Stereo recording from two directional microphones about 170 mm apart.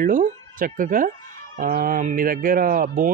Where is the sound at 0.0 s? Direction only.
55° right (ahead or behind).